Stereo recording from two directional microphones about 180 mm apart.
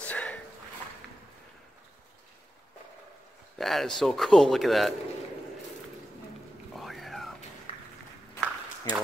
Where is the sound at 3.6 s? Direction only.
Centre (ahead or behind).